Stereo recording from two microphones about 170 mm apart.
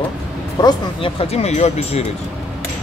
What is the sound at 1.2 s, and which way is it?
Speech, 40° left (ahead or behind).